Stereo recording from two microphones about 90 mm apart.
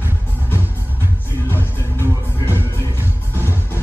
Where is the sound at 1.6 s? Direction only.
25° left (ahead or behind).